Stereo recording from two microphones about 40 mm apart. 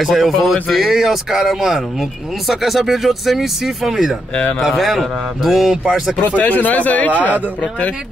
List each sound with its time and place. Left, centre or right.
0.0 s speech: centre
6.3 s speech: left